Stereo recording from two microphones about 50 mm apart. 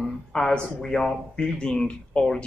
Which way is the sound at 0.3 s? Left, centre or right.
Centre.